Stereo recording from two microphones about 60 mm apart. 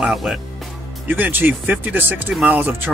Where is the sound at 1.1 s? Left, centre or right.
Right.